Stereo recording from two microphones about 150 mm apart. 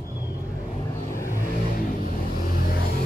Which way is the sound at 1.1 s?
20° left (ahead or behind).